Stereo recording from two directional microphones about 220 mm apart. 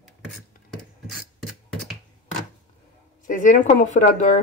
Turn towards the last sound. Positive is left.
turn(degrees=35)  # may be behind; listen again after turning